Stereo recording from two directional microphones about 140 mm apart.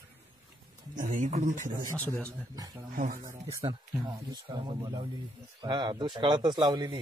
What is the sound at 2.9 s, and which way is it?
Speech, 75° right (ahead or behind).